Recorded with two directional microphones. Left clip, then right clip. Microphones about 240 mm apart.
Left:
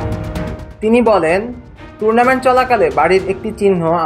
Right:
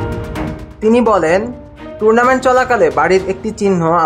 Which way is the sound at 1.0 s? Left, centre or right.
Centre.